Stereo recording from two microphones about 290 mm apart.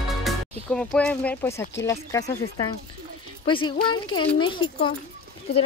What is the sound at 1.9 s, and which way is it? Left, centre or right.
Speech, centre.